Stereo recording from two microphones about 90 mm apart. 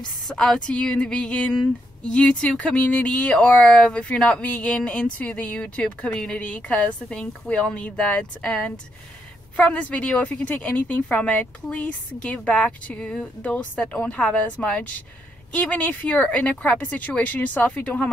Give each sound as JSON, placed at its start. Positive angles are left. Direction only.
{"t": 0.3, "sound": "a woman's voice", "side_deg": 10}